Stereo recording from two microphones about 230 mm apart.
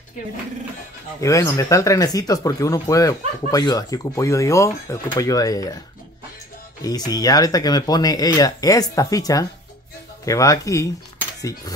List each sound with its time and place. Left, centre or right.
1.2 s speech: centre
7.1 s speech: centre